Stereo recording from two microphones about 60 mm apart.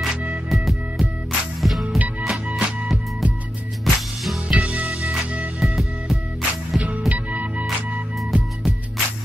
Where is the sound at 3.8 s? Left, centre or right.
Centre.